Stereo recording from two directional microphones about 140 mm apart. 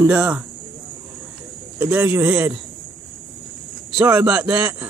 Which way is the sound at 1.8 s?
15° right (ahead or behind).